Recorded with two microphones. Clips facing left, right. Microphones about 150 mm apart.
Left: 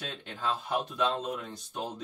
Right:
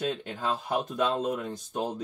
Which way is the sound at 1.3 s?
45° right (ahead or behind).